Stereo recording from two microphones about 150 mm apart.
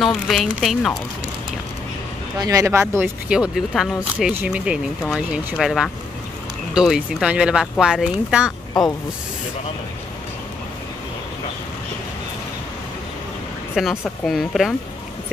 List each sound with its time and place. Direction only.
0.0 s speech: centre (ahead or behind)
2.3 s speech: 25° right (ahead or behind)
3.3 s speech: 5° right (ahead or behind)
13.7 s speech: centre (ahead or behind)